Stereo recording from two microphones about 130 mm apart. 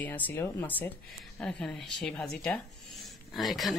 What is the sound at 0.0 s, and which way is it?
Speech, 10° left (ahead or behind).